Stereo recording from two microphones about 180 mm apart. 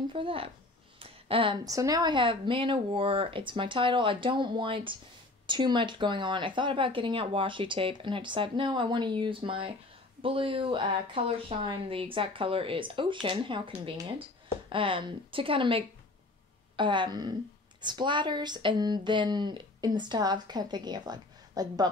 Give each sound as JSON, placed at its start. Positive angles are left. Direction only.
{"t": 0.1, "sound": "speech", "side_deg": -30}